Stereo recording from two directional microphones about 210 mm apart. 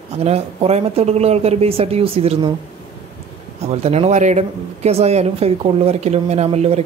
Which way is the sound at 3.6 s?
30° right (ahead or behind).